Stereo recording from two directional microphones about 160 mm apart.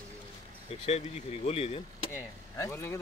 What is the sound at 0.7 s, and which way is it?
Speech, 40° left (ahead or behind).